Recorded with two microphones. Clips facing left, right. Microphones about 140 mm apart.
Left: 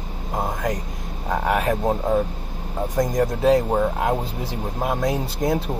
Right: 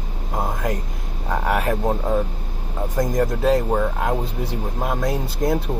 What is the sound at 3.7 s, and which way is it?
Speech, 15° left (ahead or behind).